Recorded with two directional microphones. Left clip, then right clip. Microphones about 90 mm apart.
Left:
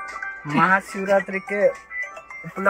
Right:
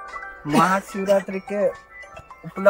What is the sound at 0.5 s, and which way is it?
Speech, 45° right (ahead or behind).